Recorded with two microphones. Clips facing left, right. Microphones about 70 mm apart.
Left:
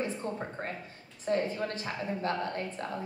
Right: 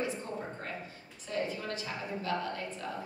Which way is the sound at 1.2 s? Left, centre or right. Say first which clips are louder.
Left 5 dB; left.